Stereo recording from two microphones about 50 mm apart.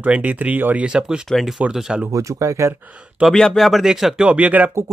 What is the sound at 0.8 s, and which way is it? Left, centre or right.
Speech, centre.